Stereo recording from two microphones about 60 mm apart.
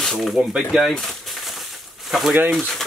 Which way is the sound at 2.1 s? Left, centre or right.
Centre.